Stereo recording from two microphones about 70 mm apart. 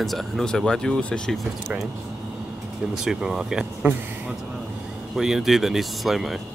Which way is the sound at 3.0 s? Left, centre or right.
Centre.